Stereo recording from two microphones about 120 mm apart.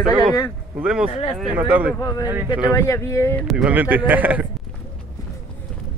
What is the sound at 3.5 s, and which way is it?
Speech, 10° right (ahead or behind).